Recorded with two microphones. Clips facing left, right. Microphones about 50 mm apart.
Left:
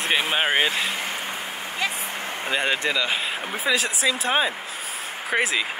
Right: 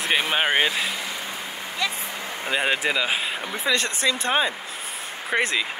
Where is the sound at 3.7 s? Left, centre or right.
Centre.